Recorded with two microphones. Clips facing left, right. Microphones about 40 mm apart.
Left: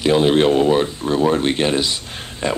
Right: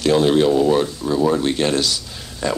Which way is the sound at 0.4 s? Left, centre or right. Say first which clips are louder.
Left 1 dB; left.